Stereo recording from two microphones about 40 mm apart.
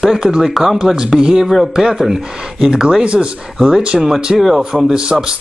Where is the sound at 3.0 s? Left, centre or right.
Right.